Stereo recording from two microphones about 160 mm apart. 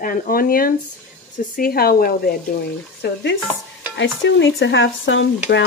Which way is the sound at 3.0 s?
90° left.